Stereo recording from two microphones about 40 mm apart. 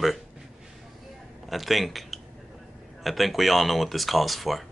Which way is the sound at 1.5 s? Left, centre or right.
Centre.